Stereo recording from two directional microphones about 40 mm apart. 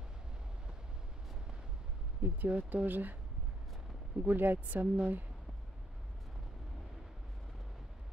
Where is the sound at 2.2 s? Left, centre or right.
Right.